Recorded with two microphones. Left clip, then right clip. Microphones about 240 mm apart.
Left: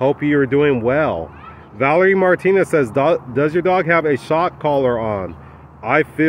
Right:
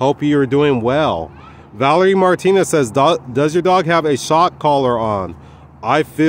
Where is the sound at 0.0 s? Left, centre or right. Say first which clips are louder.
Right 1 dB; right.